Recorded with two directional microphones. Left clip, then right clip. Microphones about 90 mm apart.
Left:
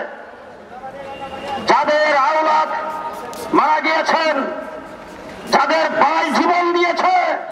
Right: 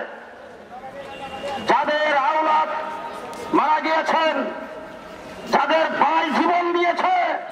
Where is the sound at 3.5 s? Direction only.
20° left (ahead or behind).